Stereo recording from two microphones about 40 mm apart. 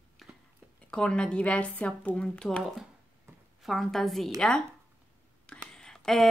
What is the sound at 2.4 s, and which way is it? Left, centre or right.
Speech, centre.